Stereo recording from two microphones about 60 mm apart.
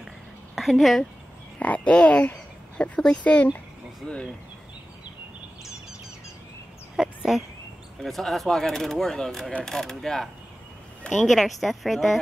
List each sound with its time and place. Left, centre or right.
0.6 s speech: centre
1.6 s speech: left
7.0 s a sound: centre
8.0 s speech: centre
9.7 s mechanisms: centre
11.2 s speech: centre